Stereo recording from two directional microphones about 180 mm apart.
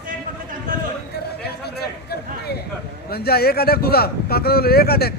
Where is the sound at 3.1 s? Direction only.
60° left (ahead or behind).